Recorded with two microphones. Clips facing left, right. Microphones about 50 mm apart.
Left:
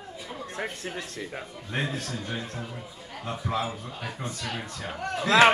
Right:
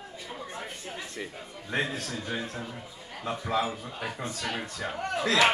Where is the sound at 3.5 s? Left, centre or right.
Right.